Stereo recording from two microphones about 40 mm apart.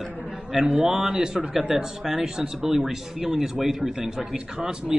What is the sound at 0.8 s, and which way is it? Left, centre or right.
Speech, right.